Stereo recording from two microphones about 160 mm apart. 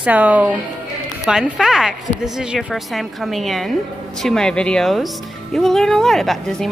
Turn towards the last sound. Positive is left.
turn(degrees=0)  # may be behind; listen again after turning